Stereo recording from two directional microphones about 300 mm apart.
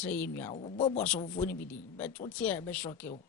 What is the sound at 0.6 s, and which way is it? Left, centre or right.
Speech, centre.